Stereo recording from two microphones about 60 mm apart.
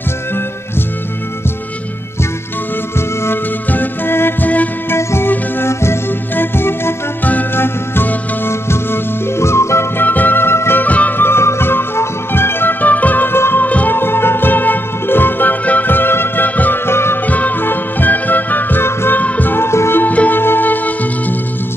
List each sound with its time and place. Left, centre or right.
3.3 s music: left
10.0 s music: left
10.8 s music: left
13.7 s music: left
13.9 s music: left
16.8 s music: left
17.3 s music: left
20.0 s music: left